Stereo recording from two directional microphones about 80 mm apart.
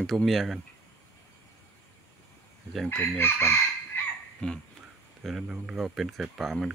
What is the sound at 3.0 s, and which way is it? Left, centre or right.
Chicken, left.